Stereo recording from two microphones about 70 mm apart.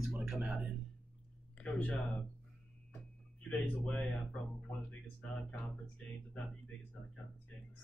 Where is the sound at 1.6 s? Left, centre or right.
Centre.